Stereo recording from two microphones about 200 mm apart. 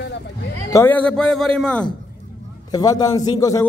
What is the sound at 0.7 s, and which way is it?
A man's voice, 10° left (ahead or behind).